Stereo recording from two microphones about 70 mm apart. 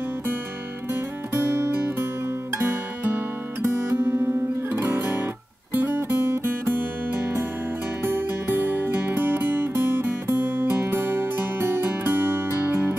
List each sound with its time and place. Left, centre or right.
1.3 s music: right